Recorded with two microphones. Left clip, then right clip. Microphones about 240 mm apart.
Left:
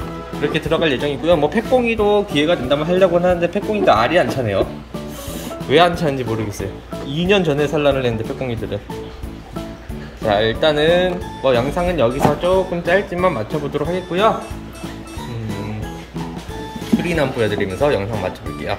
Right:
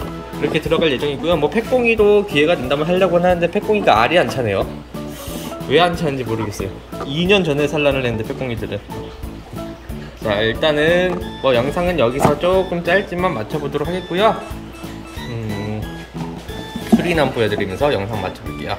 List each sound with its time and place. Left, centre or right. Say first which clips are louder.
0.4 s speech: right 1 dB; centre
5.7 s speech: left 1 dB; centre
10.2 s speech: left 1 dB; centre
17.0 s speech: even; centre